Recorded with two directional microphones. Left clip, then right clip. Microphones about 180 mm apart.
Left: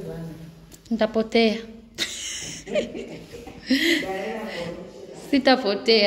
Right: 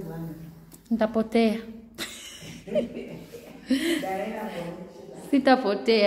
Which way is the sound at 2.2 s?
10° left (ahead or behind).